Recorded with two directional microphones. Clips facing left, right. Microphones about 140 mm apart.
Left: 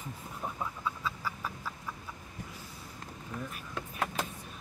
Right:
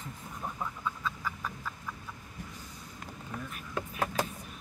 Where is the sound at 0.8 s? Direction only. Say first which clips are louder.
Right 1 dB; 5° left (ahead or behind).